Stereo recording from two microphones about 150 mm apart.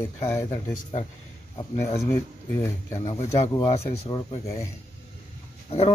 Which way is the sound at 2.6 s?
20° left (ahead or behind).